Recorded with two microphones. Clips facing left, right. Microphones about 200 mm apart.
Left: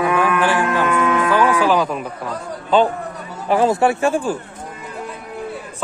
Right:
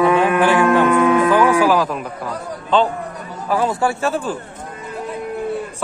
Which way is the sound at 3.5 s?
25° left (ahead or behind).